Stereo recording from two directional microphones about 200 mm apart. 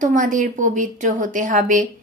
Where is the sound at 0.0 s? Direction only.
40° right (ahead or behind).